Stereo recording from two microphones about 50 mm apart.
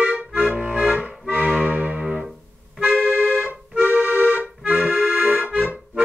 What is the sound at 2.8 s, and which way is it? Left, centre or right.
Accordion, right.